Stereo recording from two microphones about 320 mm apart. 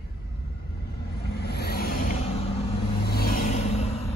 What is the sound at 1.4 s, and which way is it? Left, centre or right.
Vehicle, left.